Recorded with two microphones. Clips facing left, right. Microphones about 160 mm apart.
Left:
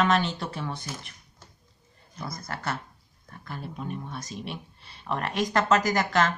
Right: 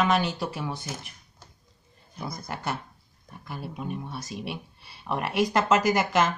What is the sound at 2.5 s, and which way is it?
Speech, 15° right (ahead or behind).